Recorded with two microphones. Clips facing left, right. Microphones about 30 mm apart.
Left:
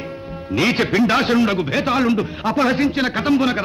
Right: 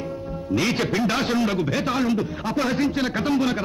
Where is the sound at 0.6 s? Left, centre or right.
Left.